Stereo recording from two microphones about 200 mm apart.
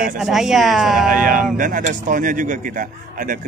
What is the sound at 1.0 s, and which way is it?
Speech, 45° right (ahead or behind).